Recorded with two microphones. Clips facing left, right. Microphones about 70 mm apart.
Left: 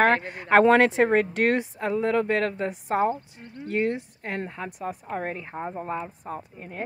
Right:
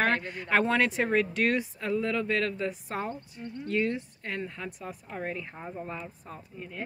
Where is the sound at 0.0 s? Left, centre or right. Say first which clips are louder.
Left 6 dB; left.